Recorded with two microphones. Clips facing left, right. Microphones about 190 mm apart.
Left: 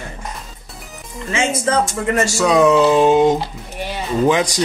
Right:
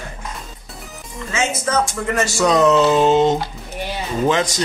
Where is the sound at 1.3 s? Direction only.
30° left (ahead or behind).